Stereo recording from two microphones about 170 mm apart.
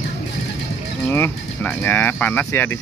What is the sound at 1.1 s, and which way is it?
Speech, 10° left (ahead or behind).